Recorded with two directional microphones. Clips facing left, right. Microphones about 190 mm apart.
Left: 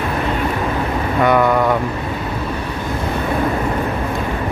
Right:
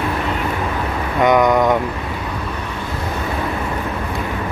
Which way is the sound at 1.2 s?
15° right (ahead or behind).